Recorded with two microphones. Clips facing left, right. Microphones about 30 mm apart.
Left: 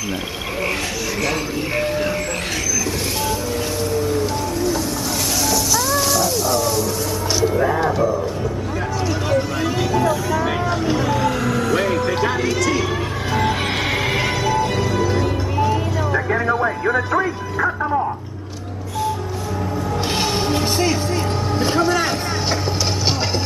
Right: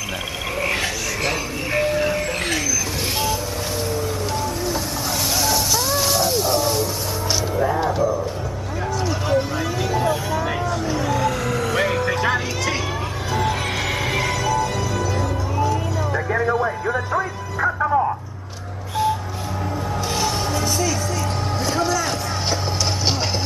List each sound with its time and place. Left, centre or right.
1.8 s music: centre
3.9 s music: centre; by 6.9 s right
7.5 s music: left
11.0 s music: centre
11.4 s vehicle: centre
13.5 s music: left
16.3 s vehicle: centre
17.7 s music: centre
20.2 s vehicle: left